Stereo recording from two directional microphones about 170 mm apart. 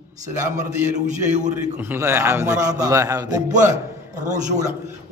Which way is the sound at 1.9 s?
15° right (ahead or behind).